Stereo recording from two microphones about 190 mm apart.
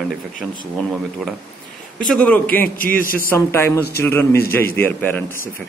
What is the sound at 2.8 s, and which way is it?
Speech, 50° left (ahead or behind).